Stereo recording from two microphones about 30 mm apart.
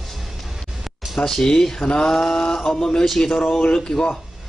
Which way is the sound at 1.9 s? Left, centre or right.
Centre.